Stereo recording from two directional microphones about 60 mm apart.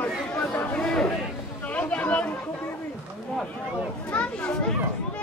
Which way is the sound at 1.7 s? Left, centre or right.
Left.